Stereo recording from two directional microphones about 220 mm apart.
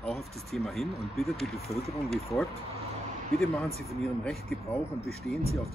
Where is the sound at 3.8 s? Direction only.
Centre (ahead or behind).